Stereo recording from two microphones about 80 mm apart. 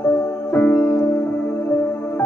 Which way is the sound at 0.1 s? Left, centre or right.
Left.